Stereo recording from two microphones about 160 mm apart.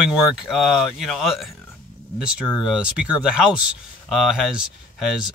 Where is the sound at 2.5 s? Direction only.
5° right (ahead or behind).